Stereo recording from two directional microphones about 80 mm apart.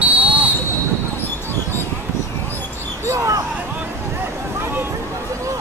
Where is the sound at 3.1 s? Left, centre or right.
Right.